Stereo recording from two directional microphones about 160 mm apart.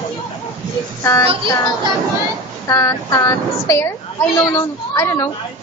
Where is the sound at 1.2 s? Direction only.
35° right (ahead or behind).